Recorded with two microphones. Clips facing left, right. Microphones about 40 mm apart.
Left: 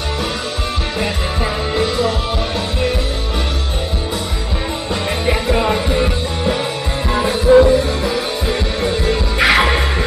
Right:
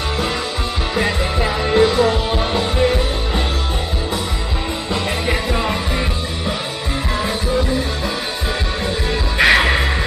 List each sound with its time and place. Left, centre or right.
1.0 s music: centre
5.2 s music: centre
7.4 s music: left
9.1 s music: centre